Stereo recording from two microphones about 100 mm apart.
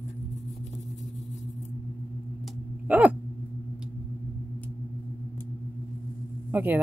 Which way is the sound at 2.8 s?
15° right (ahead or behind).